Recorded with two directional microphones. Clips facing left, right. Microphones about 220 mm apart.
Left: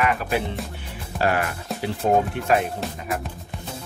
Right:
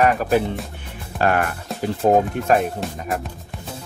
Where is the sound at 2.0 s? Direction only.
60° right (ahead or behind).